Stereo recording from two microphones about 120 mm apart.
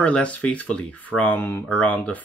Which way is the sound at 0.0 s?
10° left (ahead or behind).